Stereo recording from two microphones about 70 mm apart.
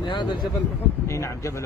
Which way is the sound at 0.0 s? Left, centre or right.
Left.